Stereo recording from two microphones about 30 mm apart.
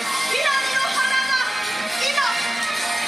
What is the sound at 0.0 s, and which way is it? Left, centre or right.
Music, centre.